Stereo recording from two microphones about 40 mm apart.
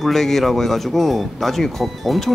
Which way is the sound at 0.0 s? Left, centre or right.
Centre.